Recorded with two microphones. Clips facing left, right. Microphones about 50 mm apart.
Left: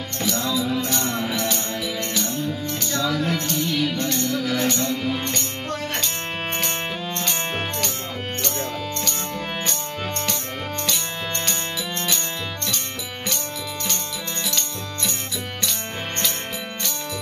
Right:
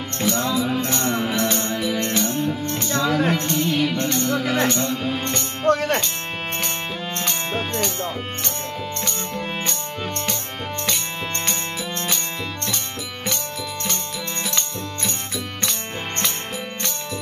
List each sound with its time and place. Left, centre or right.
0.2 s music: right
5.7 s music: right